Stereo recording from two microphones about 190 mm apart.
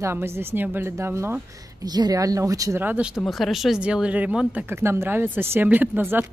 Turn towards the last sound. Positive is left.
turn(degrees=-10)  # may be behind; listen again after turning